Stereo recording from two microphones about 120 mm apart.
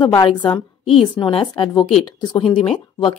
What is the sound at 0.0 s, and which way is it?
Speech, 40° left (ahead or behind).